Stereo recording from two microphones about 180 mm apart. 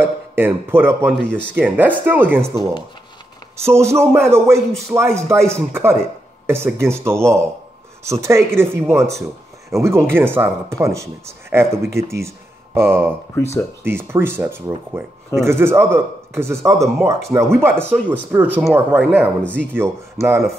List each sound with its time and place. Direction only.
0.0 s speech: 10° right (ahead or behind)
13.3 s speech: 15° left (ahead or behind)
13.8 s speech: 10° right (ahead or behind)